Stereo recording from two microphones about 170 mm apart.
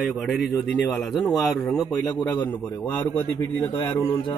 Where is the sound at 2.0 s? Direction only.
25° left (ahead or behind).